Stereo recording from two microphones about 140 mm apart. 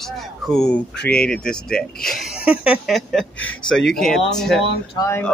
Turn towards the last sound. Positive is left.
turn(degrees=20)  # may be behind; listen again after turning